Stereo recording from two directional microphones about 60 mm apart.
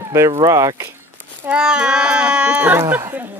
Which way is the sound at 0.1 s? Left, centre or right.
Right.